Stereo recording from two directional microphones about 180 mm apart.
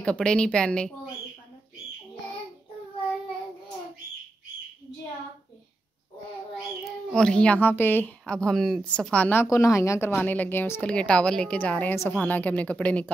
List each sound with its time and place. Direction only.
0.0 s speech: 5° left (ahead or behind)
7.1 s speech: 5° left (ahead or behind)